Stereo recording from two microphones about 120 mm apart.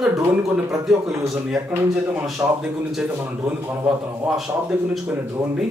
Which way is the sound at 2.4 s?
25° right (ahead or behind).